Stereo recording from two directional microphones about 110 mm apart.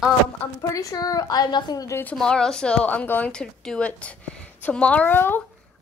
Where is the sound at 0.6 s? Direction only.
30° left (ahead or behind).